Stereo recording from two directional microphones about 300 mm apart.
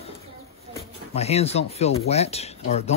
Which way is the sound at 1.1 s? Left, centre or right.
Left.